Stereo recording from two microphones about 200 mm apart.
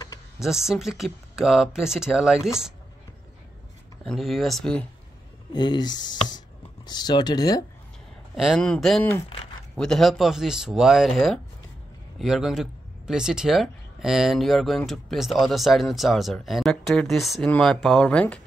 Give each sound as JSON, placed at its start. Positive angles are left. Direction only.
{"t": 0.4, "sound": "speech", "side_deg": 0}
{"t": 4.0, "sound": "speech", "side_deg": 0}
{"t": 5.5, "sound": "speech", "side_deg": 20}
{"t": 8.4, "sound": "speech", "side_deg": 0}